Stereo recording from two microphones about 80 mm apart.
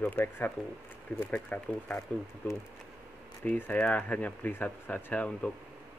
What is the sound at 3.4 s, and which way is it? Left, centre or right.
A man's voice, centre.